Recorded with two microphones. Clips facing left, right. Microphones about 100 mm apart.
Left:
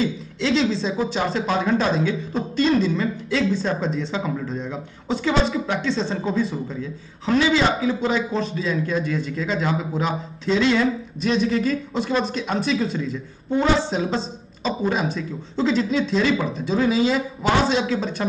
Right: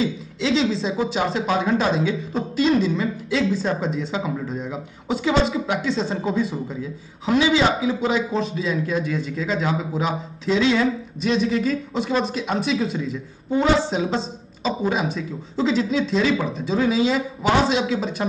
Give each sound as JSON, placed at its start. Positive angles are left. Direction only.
{"t": 0.0, "sound": "speech", "side_deg": 0}